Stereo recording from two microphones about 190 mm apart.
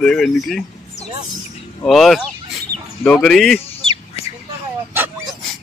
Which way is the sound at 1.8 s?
Centre (ahead or behind).